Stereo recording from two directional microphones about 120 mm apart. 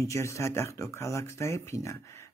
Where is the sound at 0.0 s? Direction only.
25° left (ahead or behind).